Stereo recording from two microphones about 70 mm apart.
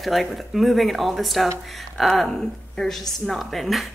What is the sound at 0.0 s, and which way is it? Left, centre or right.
A woman's voice, centre.